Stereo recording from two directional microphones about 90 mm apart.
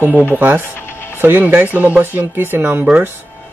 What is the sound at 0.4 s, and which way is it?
Speech, 20° right (ahead or behind).